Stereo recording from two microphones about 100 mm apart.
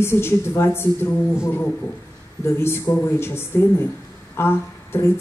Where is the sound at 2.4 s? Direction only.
25° left (ahead or behind).